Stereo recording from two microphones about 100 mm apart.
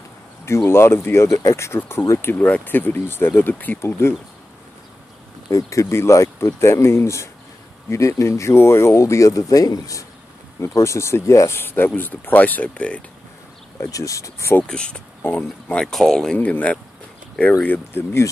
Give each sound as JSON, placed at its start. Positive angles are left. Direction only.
{"t": 0.5, "sound": "speech", "side_deg": 25}
{"t": 5.5, "sound": "speech", "side_deg": 35}
{"t": 13.7, "sound": "speech", "side_deg": 35}
{"t": 14.6, "sound": "speech", "side_deg": 10}
{"t": 16.3, "sound": "speech", "side_deg": 15}